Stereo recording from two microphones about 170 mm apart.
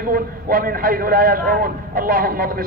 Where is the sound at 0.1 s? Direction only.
60° right (ahead or behind).